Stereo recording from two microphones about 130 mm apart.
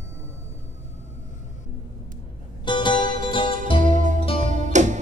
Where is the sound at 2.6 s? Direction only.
35° left (ahead or behind).